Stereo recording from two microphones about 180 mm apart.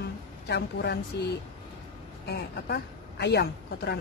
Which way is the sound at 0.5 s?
70° left (ahead or behind).